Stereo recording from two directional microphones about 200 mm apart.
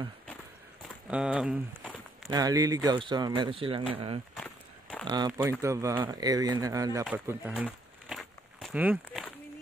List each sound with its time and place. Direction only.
1.0 s speech: 5° right (ahead or behind)
2.2 s speech: 15° right (ahead or behind)
4.4 s walk: 5° left (ahead or behind)
5.0 s speech: 20° right (ahead or behind)
7.1 s a sound: 5° right (ahead or behind)